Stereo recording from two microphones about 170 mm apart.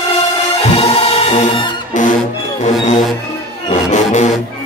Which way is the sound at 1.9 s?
50° left (ahead or behind).